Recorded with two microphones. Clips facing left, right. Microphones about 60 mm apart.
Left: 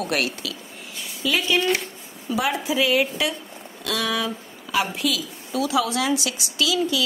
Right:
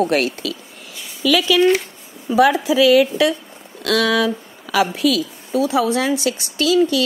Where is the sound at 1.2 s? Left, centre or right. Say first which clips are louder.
Right 6 dB; right.